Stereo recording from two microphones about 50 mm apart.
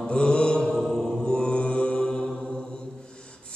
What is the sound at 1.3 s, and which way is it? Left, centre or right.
Mantra, centre.